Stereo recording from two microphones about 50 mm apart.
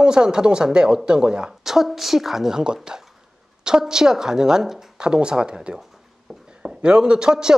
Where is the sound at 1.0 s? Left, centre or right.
Centre.